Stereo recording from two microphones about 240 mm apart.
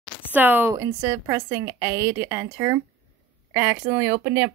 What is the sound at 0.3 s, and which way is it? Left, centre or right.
A woman's voice, centre.